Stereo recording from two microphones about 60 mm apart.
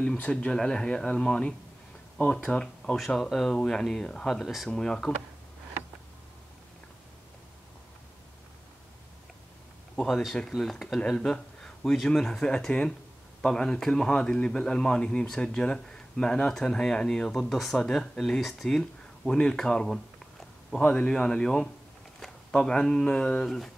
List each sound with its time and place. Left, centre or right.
0.2 s a man's voice: centre
3.1 s a man's voice: centre
4.6 s a man's voice: centre
9.9 s a man's voice: centre
18.8 s a man's voice: centre
23.4 s speech: centre